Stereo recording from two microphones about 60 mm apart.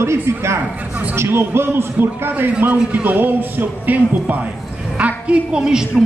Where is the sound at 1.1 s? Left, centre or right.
Right.